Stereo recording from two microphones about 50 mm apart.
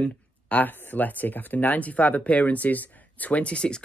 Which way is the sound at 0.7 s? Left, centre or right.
Left.